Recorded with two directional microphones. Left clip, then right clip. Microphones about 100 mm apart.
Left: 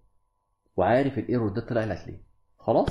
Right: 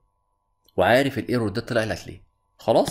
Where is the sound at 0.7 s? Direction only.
20° right (ahead or behind).